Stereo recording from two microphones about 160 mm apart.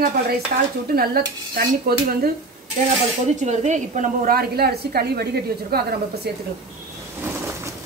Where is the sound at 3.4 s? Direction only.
45° right (ahead or behind); by 5.8 s 75° right (ahead or behind).